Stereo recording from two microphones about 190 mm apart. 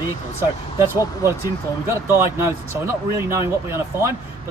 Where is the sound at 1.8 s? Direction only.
15° right (ahead or behind).